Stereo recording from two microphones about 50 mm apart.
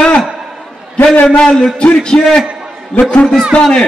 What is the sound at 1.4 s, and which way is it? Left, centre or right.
A man's voice, centre.